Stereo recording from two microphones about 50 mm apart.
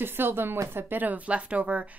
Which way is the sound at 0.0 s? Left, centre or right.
Right.